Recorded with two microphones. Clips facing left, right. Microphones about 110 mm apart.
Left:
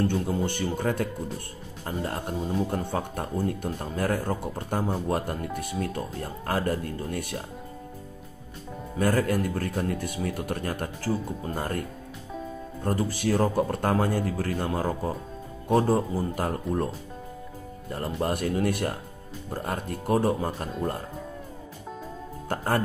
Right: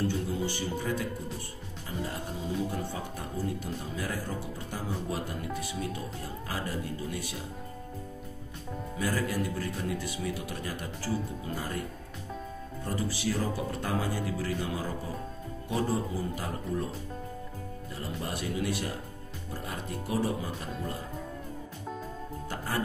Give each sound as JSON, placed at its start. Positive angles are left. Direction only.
{"t": 0.0, "sound": "a man's voice", "side_deg": 55}
{"t": 8.9, "sound": "speech", "side_deg": 50}
{"t": 12.8, "sound": "speech", "side_deg": 50}
{"t": 17.9, "sound": "speech", "side_deg": 55}
{"t": 22.5, "sound": "speech", "side_deg": 50}